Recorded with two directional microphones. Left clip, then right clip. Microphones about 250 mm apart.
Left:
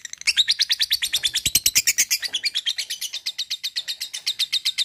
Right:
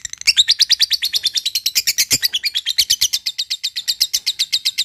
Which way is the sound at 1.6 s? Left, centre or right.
Centre.